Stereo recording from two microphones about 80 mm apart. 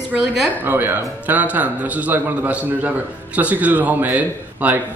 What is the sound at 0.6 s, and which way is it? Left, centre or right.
Speech, right.